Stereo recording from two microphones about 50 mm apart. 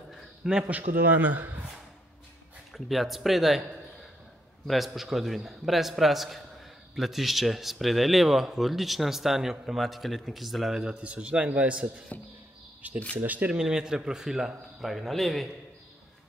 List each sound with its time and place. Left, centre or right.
0.1 s a sound: centre
2.7 s speech: centre
4.6 s speech: centre
10.9 s a man's voice: right
13.5 s a man's voice: centre